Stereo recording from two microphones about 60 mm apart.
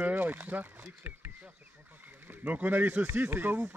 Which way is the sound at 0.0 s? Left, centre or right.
Right.